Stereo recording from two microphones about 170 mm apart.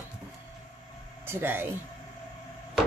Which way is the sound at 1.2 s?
15° right (ahead or behind).